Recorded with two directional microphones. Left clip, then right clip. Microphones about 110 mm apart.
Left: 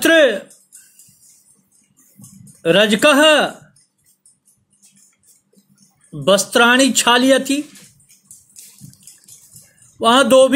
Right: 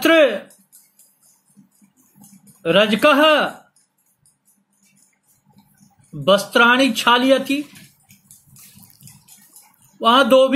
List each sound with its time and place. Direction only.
0.0 s speech: 90° left
2.6 s speech: 90° left
6.2 s speech: 90° left
9.9 s speech: 90° left